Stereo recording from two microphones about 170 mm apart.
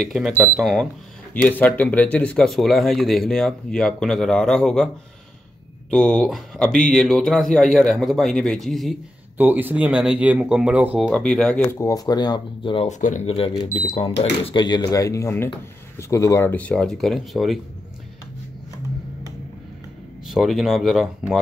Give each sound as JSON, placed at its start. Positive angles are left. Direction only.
{"t": 0.0, "sound": "speech", "side_deg": 0}
{"t": 1.3, "sound": "speech", "side_deg": 10}
{"t": 5.9, "sound": "speech", "side_deg": 5}
{"t": 9.4, "sound": "speech", "side_deg": -10}
{"t": 11.1, "sound": "speech", "side_deg": 5}
{"t": 11.8, "sound": "speech", "side_deg": 20}
{"t": 13.0, "sound": "speech", "side_deg": 45}
{"t": 14.4, "sound": "speech", "side_deg": 25}
{"t": 20.2, "sound": "speech", "side_deg": 0}